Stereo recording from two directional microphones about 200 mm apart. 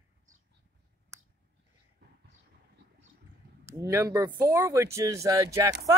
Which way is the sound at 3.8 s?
15° right (ahead or behind).